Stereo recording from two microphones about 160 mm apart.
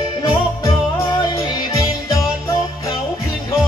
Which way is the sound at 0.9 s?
20° left (ahead or behind).